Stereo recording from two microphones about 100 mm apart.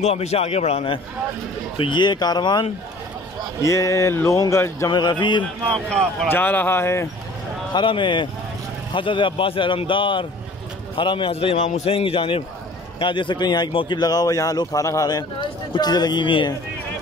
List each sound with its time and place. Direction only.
0.1 s a man's voice: 90° left
1.8 s a man's voice: 50° left (ahead or behind)
3.6 s speech: 30° left (ahead or behind)
4.9 s a man's voice: 50° left (ahead or behind)
5.7 s speech: 10° left (ahead or behind); by 7.1 s 25° left (ahead or behind)
7.7 s a man's voice: 50° left (ahead or behind)
11.3 s a man's voice: 75° left (ahead or behind)
13.0 s a man's voice: 55° left (ahead or behind)